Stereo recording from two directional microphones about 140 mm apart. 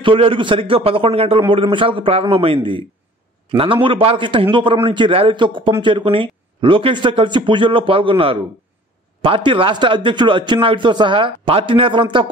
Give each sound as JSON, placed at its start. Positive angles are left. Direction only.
{"t": 0.0, "sound": "speech", "side_deg": -40}